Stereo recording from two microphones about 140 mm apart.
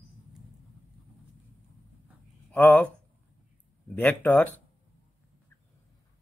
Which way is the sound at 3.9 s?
10° left (ahead or behind).